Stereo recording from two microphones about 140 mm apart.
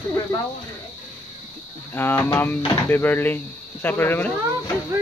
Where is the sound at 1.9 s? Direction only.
15° left (ahead or behind).